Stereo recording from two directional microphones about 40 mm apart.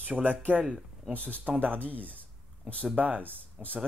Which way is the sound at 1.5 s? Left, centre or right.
Right.